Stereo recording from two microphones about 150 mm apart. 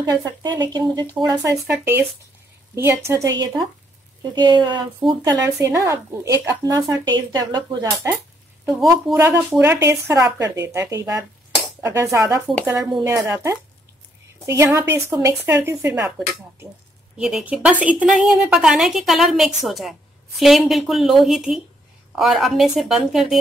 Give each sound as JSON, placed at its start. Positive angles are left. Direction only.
{"t": 0.0, "sound": "a woman's voice", "side_deg": -25}
{"t": 17.2, "sound": "a woman's voice", "side_deg": -5}